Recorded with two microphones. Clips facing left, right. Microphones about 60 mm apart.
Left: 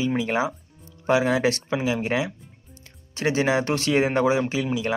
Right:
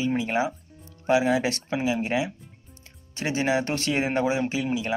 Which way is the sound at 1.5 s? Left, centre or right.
Right.